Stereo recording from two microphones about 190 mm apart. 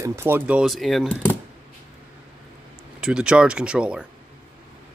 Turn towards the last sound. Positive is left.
turn(degrees=-5)  # may be behind; listen again after turning